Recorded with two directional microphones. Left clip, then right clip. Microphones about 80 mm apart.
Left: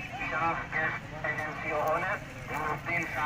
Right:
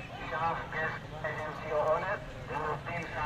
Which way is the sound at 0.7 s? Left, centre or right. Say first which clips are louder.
Left 4 dB; centre.